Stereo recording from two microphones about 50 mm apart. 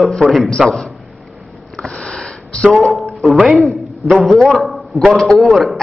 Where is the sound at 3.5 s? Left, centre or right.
Centre.